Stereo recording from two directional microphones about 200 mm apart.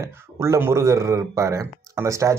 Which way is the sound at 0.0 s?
10° right (ahead or behind).